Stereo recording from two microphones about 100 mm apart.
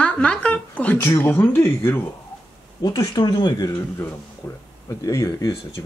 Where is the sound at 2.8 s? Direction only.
45° left (ahead or behind).